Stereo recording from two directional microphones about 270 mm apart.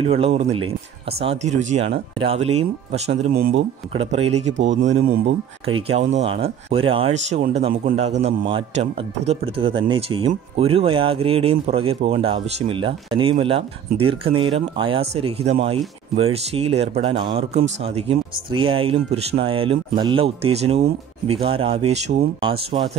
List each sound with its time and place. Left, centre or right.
0.0 s speech: right
3.9 s speech: right
4.8 s speech: right
5.8 s speech: right